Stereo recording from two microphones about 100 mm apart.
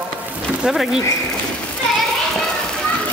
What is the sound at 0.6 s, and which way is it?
Speech, 5° right (ahead or behind).